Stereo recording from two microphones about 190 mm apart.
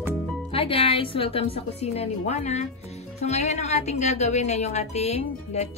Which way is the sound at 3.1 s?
35° left (ahead or behind).